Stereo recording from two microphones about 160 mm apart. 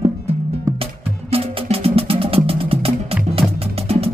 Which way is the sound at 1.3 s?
40° right (ahead or behind).